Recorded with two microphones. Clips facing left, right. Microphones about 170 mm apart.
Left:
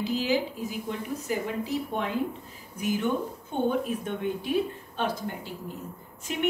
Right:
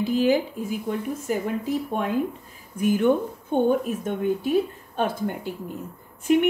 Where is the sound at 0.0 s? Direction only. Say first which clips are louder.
Right 6 dB; 50° right (ahead or behind).